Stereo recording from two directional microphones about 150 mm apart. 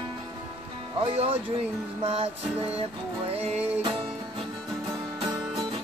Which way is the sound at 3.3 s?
40° right (ahead or behind).